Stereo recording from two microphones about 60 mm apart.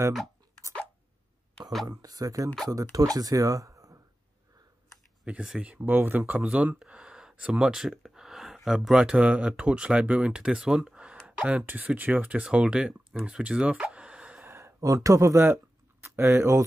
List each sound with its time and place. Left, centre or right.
1.9 s speech: right
5.3 s speech: right
6.4 s speech: right
13.9 s plop: centre
14.4 s a sound: right
14.8 s speech: right
15.4 s speech: right